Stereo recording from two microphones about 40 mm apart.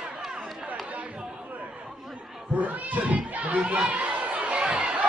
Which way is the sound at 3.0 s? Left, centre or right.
Right.